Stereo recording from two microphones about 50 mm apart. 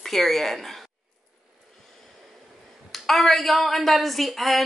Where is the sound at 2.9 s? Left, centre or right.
Centre.